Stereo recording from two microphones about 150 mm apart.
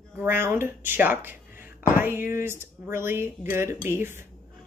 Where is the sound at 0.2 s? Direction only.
15° right (ahead or behind).